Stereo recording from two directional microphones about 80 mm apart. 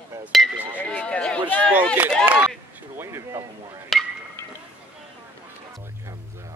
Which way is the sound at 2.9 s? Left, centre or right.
Right.